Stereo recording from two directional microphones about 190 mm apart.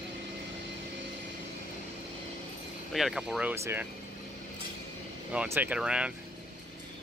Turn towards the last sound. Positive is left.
turn(degrees=-5)  # may be behind; listen again after turning